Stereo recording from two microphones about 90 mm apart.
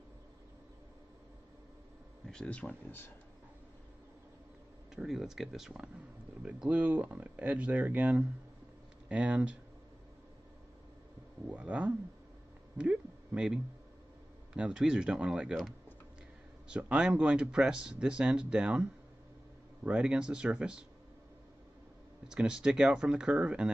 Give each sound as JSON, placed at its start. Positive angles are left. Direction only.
{"t": 2.2, "sound": "speech", "side_deg": 10}
{"t": 4.9, "sound": "speech", "side_deg": 0}
{"t": 11.4, "sound": "speech", "side_deg": -15}
{"t": 12.7, "sound": "a sound", "side_deg": -15}
{"t": 14.5, "sound": "speech", "side_deg": -10}
{"t": 16.6, "sound": "speech", "side_deg": -10}
{"t": 22.3, "sound": "speech", "side_deg": -10}